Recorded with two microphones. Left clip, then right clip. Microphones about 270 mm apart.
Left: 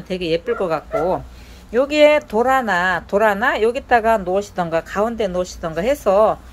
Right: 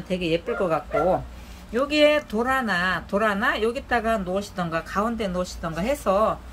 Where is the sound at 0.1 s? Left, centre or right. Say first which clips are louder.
Left 5 dB; centre.